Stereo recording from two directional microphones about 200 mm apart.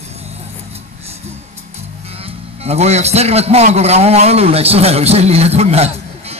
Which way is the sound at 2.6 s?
30° right (ahead or behind).